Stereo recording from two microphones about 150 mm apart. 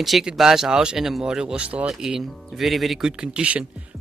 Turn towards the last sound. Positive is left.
turn(degrees=-10)  # may be behind; listen again after turning